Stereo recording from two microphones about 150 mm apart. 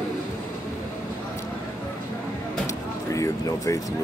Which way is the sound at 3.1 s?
20° left (ahead or behind).